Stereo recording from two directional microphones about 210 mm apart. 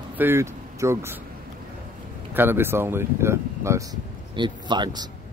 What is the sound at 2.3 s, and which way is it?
A man's voice, 10° right (ahead or behind).